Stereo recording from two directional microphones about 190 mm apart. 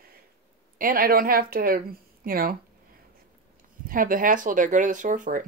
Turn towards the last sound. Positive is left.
turn(degrees=-45)  # may be behind; listen again after turning